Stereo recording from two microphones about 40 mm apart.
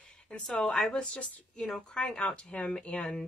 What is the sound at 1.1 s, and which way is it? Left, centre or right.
Speech, left.